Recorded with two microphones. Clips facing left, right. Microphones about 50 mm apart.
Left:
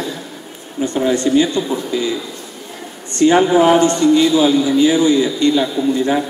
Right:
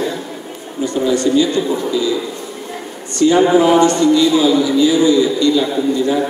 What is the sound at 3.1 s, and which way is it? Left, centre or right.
A man's voice, left.